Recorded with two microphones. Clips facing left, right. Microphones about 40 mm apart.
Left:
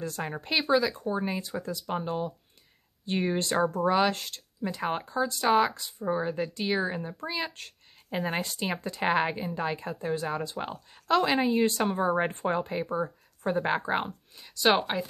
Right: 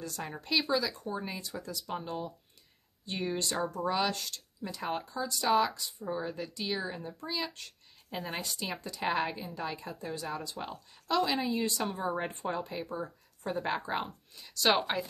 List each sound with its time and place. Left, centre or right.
0.0 s speech: left
11.1 s speech: left
14.3 s speech: centre